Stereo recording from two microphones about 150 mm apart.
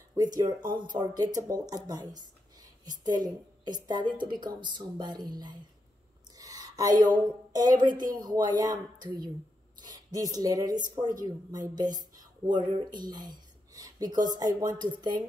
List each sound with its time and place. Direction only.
0.7 s a woman's voice: 30° right (ahead or behind)
6.3 s a sound: 25° right (ahead or behind)
8.0 s speech: 65° right (ahead or behind)
8.3 s a woman's voice: 25° right (ahead or behind)